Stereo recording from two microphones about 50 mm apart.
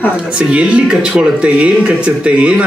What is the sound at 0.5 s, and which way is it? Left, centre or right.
Speech, right.